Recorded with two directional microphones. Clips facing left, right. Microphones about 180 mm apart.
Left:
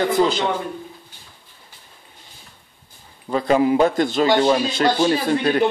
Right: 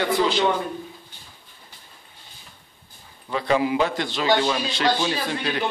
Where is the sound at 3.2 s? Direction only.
40° left (ahead or behind).